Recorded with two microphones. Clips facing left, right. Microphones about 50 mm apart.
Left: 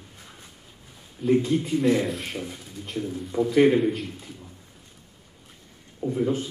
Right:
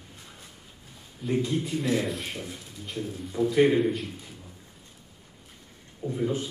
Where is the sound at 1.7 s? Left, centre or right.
Centre.